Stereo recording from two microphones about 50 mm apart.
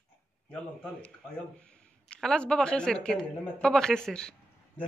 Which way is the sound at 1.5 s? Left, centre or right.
Left.